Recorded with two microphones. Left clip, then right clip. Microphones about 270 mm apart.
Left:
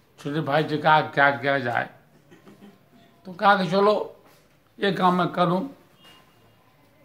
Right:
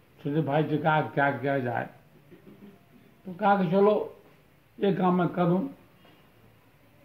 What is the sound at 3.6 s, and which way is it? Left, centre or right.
Speech, left.